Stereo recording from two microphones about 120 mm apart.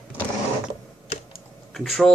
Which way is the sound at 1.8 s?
5° left (ahead or behind).